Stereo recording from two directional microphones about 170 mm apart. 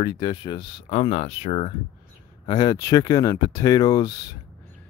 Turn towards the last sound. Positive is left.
turn(degrees=25)  # may be behind; listen again after turning